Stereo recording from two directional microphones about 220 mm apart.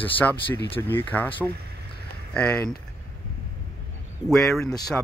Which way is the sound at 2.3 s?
5° left (ahead or behind).